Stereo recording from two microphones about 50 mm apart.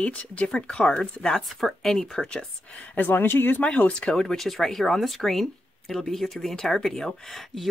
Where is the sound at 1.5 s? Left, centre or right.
Centre.